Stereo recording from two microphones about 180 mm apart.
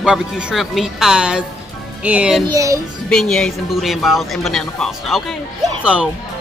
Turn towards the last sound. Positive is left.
turn(degrees=-5)  # may be behind; listen again after turning